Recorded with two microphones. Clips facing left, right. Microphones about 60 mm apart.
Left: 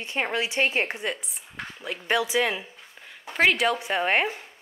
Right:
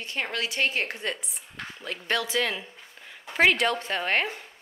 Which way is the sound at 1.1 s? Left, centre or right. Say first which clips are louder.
Left 1 dB; centre.